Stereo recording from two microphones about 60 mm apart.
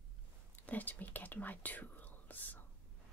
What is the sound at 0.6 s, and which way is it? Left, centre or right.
Speech, left.